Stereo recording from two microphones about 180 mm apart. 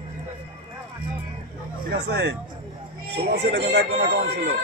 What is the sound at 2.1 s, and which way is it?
Speech, 70° right (ahead or behind).